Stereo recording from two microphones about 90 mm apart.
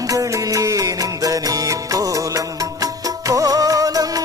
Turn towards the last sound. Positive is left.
turn(degrees=-45)  # may be behind; listen again after turning